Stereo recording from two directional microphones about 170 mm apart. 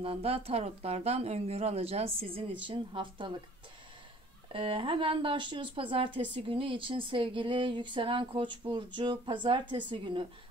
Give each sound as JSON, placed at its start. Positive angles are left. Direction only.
{"t": 0.0, "sound": "speech", "side_deg": -35}
{"t": 4.5, "sound": "speech", "side_deg": -30}